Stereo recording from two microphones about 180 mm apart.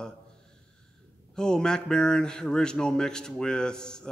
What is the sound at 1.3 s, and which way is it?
A man's voice, 5° left (ahead or behind).